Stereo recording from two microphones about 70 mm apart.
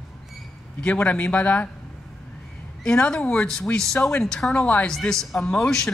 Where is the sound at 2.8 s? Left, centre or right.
Centre.